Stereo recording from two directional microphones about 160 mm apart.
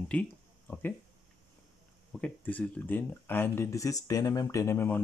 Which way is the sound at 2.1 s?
5° left (ahead or behind).